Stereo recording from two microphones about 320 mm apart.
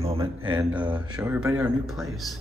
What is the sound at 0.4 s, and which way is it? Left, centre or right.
Speech, centre.